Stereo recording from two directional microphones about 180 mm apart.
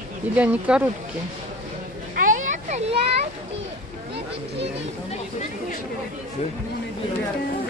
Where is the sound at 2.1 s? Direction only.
45° right (ahead or behind).